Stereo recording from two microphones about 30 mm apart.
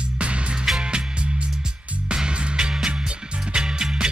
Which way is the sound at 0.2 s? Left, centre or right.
Right.